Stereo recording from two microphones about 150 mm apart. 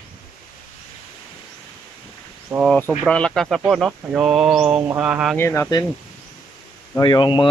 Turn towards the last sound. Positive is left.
turn(degrees=30)  # may be behind; listen again after turning